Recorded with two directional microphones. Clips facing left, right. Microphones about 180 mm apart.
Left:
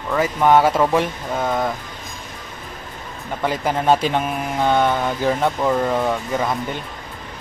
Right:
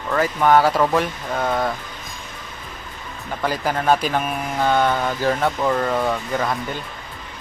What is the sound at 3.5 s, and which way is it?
Speech, 20° left (ahead or behind).